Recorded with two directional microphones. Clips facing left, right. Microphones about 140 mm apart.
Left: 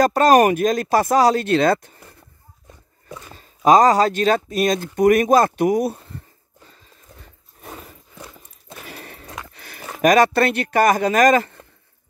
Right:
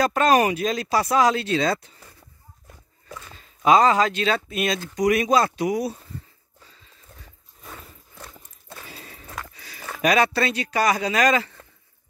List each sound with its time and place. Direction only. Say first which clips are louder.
0.0 s speech: left 5 dB; 40° left (ahead or behind)
1.5 s speech: left 6 dB; 55° left (ahead or behind)
3.1 s speech: left 3 dB; 15° left (ahead or behind)
3.3 s speech: left 4 dB; 40° left (ahead or behind); by 6.2 s 55° left (ahead or behind)
7.6 s a sound: left 5 dB; 75° left (ahead or behind)
8.2 s horse: left 3 dB; 15° left (ahead or behind)
8.8 s a sound: left 5 dB; 65° left (ahead or behind)
10.0 s speech: left 6 dB; 45° left (ahead or behind)